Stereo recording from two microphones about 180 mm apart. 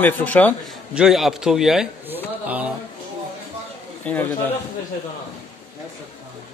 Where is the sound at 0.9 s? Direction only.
Centre (ahead or behind).